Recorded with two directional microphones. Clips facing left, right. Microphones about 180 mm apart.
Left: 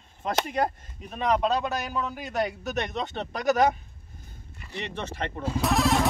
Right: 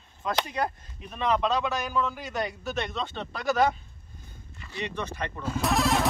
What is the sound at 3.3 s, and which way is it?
Speech, 45° left (ahead or behind).